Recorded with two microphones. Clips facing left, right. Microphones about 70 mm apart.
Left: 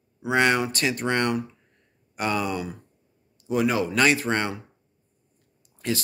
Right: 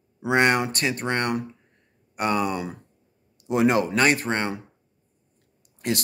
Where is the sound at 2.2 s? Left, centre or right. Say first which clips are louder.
Right 2 dB; right.